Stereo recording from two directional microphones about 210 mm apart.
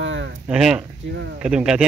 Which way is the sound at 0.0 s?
60° right (ahead or behind).